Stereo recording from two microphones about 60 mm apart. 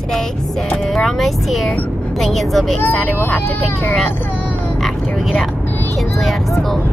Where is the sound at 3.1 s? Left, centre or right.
Left.